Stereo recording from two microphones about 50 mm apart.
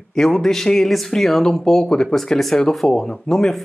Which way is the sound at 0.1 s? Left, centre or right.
Centre.